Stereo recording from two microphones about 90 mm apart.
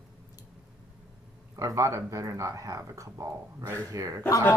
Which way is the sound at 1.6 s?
35° right (ahead or behind).